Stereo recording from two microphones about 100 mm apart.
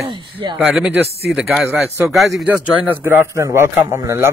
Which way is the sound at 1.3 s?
5° right (ahead or behind).